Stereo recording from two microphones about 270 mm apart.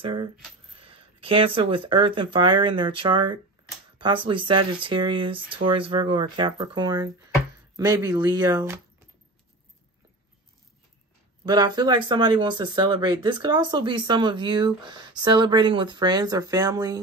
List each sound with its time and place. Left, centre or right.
0.0 s speech: centre
11.4 s speech: centre